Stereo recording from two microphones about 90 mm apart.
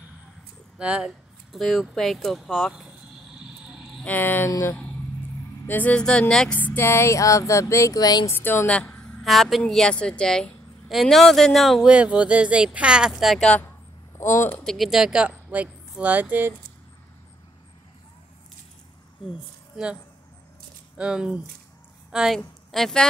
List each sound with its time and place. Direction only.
0.7 s a woman's voice: 10° right (ahead or behind)
4.0 s speech: 20° left (ahead or behind)
4.5 s a sound: 30° left (ahead or behind)
5.7 s speech: 20° left (ahead or behind)
6.5 s a sound: 20° left (ahead or behind); by 8.3 s 50° left (ahead or behind)
8.3 s a woman's voice: 25° left (ahead or behind)
9.2 s a woman's voice: centre (ahead or behind)
11.8 s a woman's voice: 15° right (ahead or behind)
14.1 s speech: 30° left (ahead or behind)
14.6 s a woman's voice: centre (ahead or behind); by 16.5 s 20° right (ahead or behind)
21.0 s a woman's voice: 10° right (ahead or behind)